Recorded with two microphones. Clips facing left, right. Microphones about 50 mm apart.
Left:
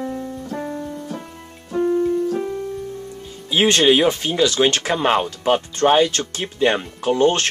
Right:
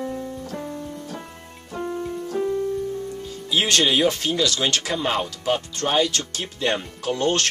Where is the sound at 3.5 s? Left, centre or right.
Left.